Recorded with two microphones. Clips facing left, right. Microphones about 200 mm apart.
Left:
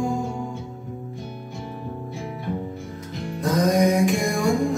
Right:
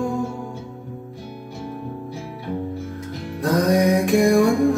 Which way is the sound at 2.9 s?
60° right (ahead or behind).